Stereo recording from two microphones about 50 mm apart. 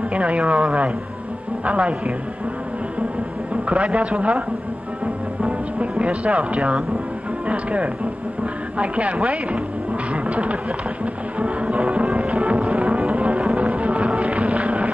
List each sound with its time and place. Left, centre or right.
0.1 s speech: right
3.6 s speech: right
5.0 s music: right
7.4 s speech: right
10.1 s music: right